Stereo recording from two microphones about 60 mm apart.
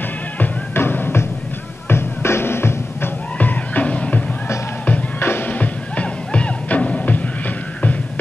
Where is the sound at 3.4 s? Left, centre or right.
Left.